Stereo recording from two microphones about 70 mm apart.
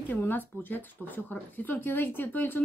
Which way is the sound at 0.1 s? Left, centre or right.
Left.